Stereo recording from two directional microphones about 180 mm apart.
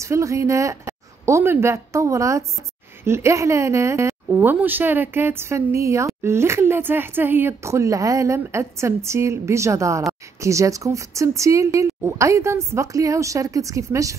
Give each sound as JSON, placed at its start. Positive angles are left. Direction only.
{"t": 0.0, "sound": "a woman's voice", "side_deg": -15}